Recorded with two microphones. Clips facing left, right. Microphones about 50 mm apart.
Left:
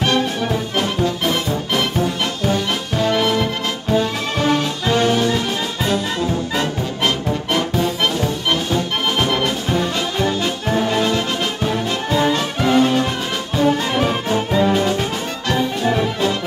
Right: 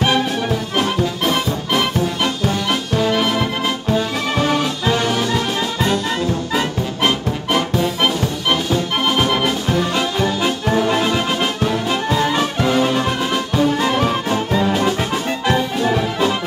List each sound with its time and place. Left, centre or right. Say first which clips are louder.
0.0 s music: right 1 dB; centre